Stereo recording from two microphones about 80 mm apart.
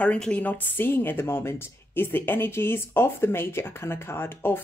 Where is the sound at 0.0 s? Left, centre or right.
Centre.